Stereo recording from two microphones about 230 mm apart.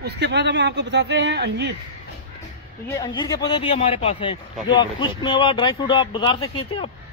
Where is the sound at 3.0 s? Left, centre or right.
Centre.